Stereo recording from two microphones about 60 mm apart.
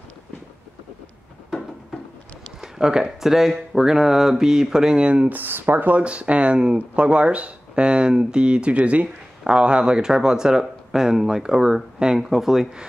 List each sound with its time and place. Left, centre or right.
2.6 s speech: centre
5.3 s speech: right; by 12.8 s centre